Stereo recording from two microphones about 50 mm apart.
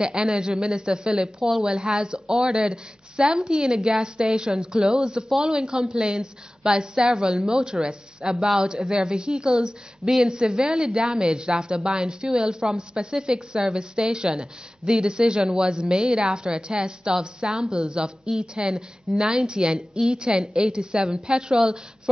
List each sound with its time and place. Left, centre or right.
0.0 s a woman's voice: centre